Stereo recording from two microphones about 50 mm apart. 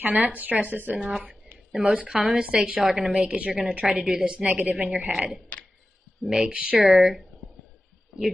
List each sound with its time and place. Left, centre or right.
0.0 s speech: right
0.9 s speech: centre
1.9 s a woman's voice: right
6.9 s speech: centre